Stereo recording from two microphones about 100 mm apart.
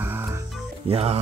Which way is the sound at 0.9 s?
90° right.